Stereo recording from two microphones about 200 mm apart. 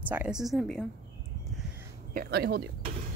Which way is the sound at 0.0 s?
10° right (ahead or behind).